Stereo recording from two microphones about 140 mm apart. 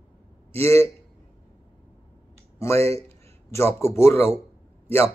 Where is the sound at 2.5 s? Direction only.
20° left (ahead or behind).